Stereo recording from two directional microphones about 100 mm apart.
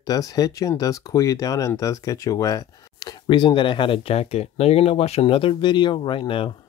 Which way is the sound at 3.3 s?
50° left (ahead or behind).